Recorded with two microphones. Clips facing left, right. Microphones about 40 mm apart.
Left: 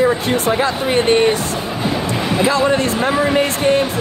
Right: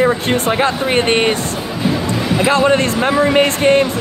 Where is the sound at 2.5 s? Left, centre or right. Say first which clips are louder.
Right 4 dB; right.